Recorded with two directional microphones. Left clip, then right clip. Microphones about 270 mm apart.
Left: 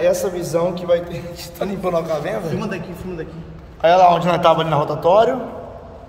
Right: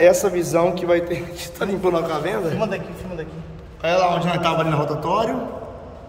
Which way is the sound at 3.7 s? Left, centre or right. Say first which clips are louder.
Left 7 dB; centre.